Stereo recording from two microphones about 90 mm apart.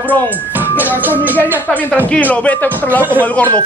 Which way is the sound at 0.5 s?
20° right (ahead or behind).